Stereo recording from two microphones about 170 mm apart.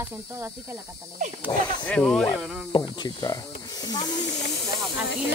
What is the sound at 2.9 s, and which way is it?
Speech, 25° left (ahead or behind).